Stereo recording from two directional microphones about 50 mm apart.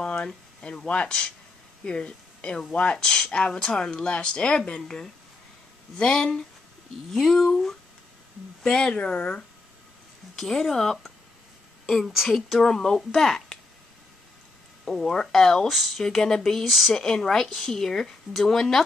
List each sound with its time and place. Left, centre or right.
0.0 s speech: centre
7.1 s speech: centre; by 9.4 s left
10.3 s speech: centre
14.9 s speech: centre
15.6 s speech: centre